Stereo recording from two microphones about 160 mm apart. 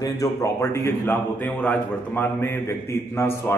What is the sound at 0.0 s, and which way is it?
A man's voice, 20° left (ahead or behind).